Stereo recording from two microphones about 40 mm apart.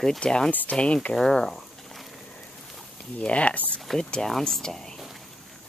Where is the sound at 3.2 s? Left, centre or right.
Left.